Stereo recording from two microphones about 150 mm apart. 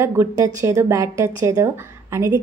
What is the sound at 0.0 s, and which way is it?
A woman's voice, 15° right (ahead or behind).